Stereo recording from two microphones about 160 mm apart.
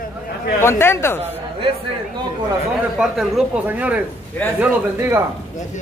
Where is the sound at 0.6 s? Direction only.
15° left (ahead or behind).